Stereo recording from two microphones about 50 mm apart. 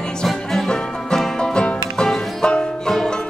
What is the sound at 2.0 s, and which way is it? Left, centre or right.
Music, centre.